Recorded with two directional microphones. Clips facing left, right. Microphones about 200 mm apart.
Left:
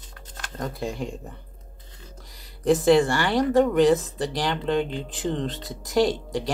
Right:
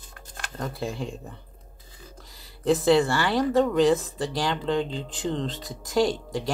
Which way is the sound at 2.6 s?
20° left (ahead or behind).